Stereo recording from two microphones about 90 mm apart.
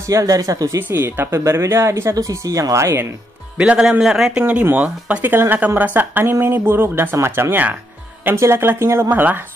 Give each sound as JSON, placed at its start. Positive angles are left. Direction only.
{"t": 0.1, "sound": "speech", "side_deg": -40}
{"t": 0.8, "sound": "speech", "side_deg": -25}
{"t": 3.5, "sound": "a man's voice", "side_deg": -10}
{"t": 4.4, "sound": "speech", "side_deg": -15}
{"t": 9.1, "sound": "speech", "side_deg": -20}